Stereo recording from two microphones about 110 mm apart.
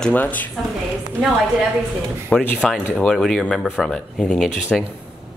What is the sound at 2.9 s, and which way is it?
Music, 5° left (ahead or behind).